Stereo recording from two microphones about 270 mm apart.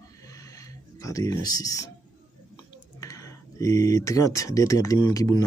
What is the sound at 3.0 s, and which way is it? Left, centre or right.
Speech, centre.